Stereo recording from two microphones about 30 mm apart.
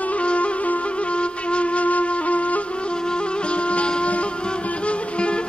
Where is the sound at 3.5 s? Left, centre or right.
Left.